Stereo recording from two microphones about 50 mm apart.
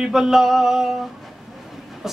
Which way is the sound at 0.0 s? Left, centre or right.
Centre.